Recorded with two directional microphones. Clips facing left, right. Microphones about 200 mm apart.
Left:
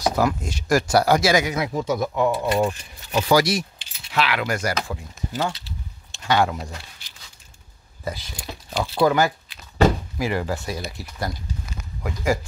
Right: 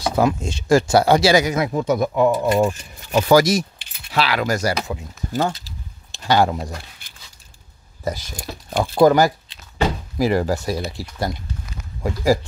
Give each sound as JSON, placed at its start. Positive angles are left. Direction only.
{"t": 0.1, "sound": "speech", "side_deg": -25}
{"t": 1.5, "sound": "speech", "side_deg": -50}
{"t": 4.1, "sound": "speech", "side_deg": -35}
{"t": 6.1, "sound": "speech", "side_deg": -35}
{"t": 7.0, "sound": "a sound", "side_deg": -55}
{"t": 8.0, "sound": "speech", "side_deg": -40}